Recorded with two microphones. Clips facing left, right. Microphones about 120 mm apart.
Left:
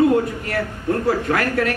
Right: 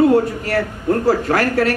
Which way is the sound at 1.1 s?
35° right (ahead or behind).